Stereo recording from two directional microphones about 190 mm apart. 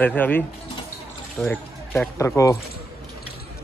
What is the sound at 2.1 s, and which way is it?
Speech, 15° left (ahead or behind).